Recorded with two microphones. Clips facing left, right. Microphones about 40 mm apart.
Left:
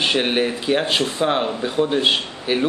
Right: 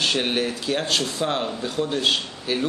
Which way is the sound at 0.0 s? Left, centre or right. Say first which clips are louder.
Left 4 dB; left.